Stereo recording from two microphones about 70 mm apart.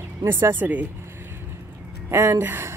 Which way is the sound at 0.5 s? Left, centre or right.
Right.